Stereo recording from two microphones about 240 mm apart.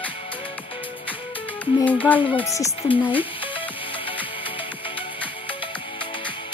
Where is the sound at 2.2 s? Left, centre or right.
Left.